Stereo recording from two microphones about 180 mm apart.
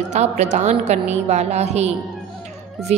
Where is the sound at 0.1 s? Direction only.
40° right (ahead or behind).